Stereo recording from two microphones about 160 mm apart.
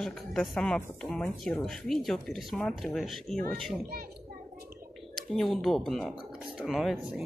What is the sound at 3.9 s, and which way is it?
Speech, 65° right (ahead or behind).